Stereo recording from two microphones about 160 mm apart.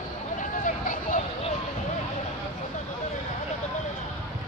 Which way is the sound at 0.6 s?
55° left (ahead or behind).